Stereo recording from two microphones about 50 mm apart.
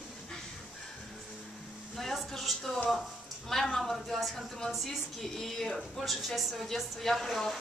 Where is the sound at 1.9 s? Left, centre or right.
Centre.